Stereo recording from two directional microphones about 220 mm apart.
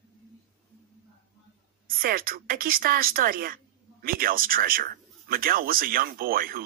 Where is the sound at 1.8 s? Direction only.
40° right (ahead or behind).